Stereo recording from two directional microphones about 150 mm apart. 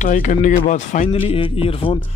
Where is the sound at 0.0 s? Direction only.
55° left (ahead or behind).